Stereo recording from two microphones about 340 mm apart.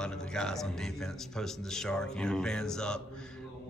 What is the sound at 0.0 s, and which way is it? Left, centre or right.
Speech, centre.